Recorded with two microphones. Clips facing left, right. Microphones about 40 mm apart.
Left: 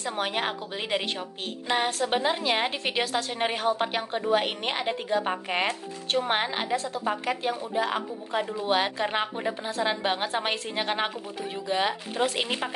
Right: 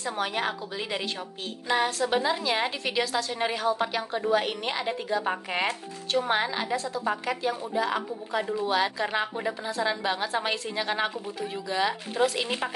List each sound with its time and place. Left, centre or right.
0.0 s a woman's voice: left